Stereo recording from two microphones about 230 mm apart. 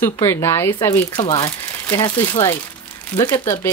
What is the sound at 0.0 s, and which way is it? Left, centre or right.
Speech, centre.